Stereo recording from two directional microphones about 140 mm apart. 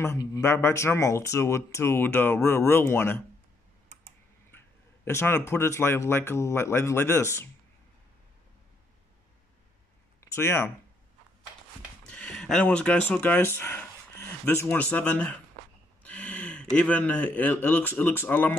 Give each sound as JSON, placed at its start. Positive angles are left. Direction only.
{"t": 0.0, "sound": "speech", "side_deg": 20}
{"t": 5.0, "sound": "speech", "side_deg": 15}
{"t": 10.2, "sound": "speech", "side_deg": 20}
{"t": 12.1, "sound": "speech", "side_deg": 5}